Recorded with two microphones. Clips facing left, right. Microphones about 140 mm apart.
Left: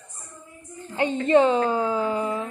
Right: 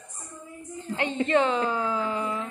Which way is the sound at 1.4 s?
35° left (ahead or behind).